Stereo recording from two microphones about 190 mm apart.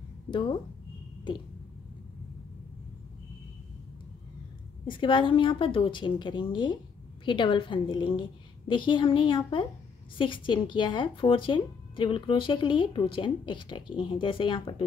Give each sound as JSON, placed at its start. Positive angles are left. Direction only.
{"t": 0.3, "sound": "speech", "side_deg": 25}
{"t": 4.8, "sound": "speech", "side_deg": 25}